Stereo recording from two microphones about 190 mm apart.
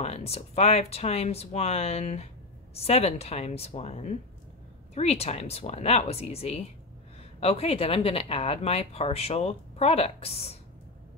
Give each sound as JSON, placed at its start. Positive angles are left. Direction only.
{"t": 0.0, "sound": "speech", "side_deg": 35}